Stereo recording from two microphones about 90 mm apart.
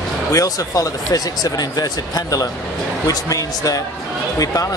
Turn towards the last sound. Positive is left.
turn(degrees=40)  # may be behind; listen again after turning